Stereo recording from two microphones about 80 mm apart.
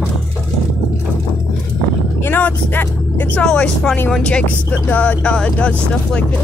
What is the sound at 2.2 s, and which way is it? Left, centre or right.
Speech, left.